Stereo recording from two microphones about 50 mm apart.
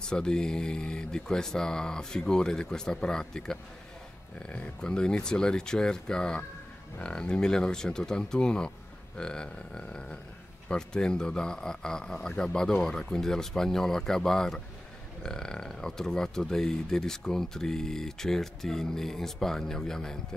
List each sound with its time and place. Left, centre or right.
0.0 s speech: centre